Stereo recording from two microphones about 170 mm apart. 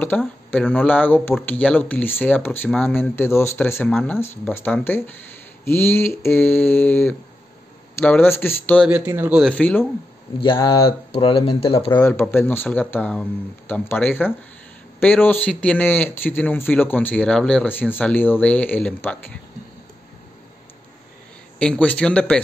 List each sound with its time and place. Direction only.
0.1 s speech: 5° left (ahead or behind)
9.0 s speech: 10° right (ahead or behind)
9.4 s speech: 5° left (ahead or behind)
10.4 s speech: 30° left (ahead or behind)
12.0 s speech: 10° left (ahead or behind)
21.5 s speech: 5° left (ahead or behind)